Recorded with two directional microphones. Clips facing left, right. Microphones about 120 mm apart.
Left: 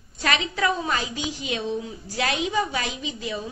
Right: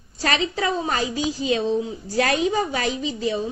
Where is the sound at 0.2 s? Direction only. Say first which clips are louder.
Right 1 dB; 35° right (ahead or behind).